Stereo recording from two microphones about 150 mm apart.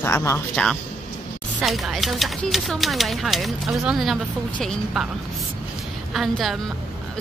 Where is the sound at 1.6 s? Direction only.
Centre (ahead or behind).